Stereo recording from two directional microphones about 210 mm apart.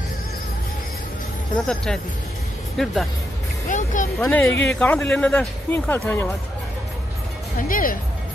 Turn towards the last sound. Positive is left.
turn(degrees=40)  # may be behind; listen again after turning